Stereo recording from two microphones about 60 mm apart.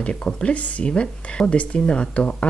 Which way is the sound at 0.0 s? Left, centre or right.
Centre.